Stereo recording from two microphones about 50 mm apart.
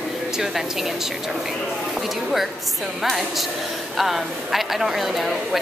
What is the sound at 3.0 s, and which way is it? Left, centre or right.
Speech, centre.